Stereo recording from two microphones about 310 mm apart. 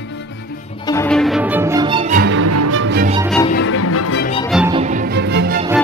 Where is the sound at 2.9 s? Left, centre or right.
Right.